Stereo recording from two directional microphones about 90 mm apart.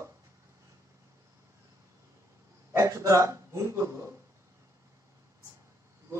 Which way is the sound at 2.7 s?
35° right (ahead or behind).